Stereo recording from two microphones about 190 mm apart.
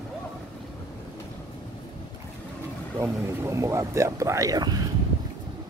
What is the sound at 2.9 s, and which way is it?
Speech, 15° right (ahead or behind).